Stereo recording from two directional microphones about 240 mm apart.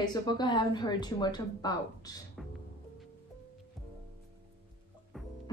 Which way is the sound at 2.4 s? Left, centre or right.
Centre.